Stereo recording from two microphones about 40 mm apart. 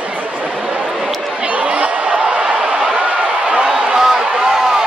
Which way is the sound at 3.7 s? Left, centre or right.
Centre.